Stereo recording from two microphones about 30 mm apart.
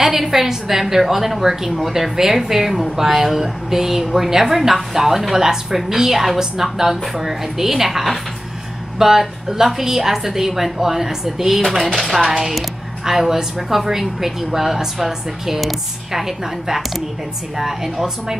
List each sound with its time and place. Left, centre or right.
0.0 s a woman's voice: centre
12.3 s a woman's voice: centre